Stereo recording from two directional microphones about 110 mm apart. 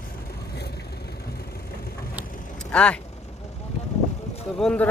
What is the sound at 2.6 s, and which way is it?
Speech, 10° left (ahead or behind).